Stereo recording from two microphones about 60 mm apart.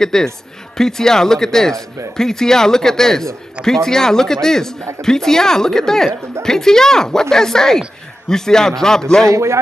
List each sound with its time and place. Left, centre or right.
0.0 s speech: centre
9.3 s speech: right